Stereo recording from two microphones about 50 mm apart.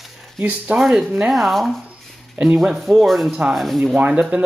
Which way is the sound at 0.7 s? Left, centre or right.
Right.